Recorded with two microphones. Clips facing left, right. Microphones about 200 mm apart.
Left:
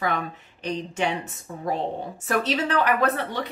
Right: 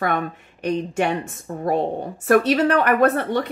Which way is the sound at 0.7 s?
55° right (ahead or behind).